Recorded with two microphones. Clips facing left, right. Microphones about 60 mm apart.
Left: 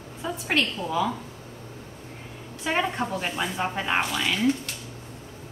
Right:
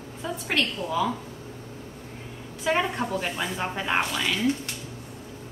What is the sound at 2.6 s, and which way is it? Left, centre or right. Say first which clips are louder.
A woman's voice: right 1 dB; centre.